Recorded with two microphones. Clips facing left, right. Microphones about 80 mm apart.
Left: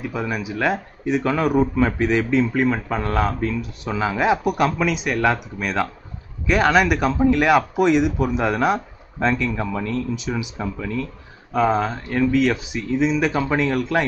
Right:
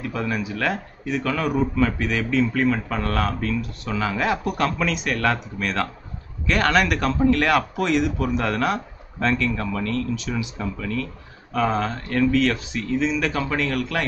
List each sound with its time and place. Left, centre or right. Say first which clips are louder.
0.0 s speech: even; centre